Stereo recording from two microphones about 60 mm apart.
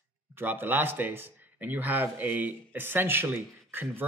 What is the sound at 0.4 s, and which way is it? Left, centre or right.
Speech, right.